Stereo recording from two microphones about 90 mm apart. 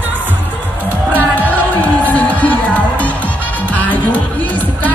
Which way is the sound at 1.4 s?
20° left (ahead or behind).